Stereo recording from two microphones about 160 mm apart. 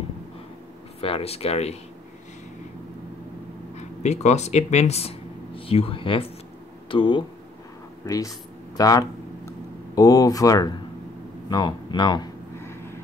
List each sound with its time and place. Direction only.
1.0 s speech: 40° left (ahead or behind)
3.7 s speech: 45° left (ahead or behind); by 12.3 s 25° left (ahead or behind)
12.6 s vehicle: 15° left (ahead or behind)